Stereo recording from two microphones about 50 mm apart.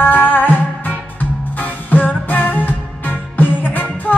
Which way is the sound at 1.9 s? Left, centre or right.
Left.